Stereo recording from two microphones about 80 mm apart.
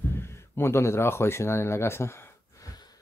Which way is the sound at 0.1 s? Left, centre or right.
Left.